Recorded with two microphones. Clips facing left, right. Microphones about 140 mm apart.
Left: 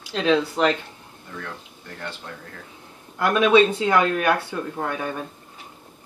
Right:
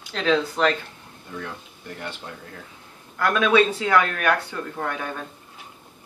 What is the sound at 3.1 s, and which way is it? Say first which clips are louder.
Speech: left 2 dB; 20° left (ahead or behind).